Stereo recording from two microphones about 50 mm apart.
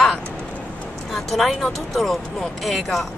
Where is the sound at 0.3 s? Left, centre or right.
Left.